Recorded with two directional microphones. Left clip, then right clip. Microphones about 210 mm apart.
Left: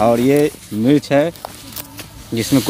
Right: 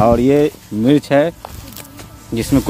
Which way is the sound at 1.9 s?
Centre (ahead or behind).